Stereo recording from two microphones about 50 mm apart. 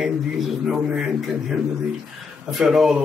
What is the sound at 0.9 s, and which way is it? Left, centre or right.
Speech, centre.